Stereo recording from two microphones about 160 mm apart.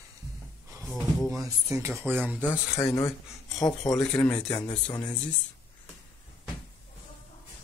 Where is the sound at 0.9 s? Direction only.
Centre (ahead or behind).